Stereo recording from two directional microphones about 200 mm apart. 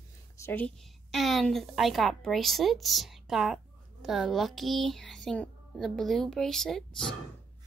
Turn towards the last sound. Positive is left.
turn(degrees=0)  # may be behind; listen again after turning